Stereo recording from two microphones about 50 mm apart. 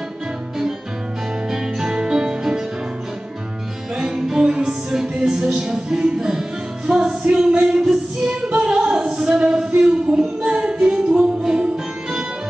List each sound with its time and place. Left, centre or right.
1.5 s music: centre
3.9 s music: centre
8.5 s singing: centre
9.8 s music: centre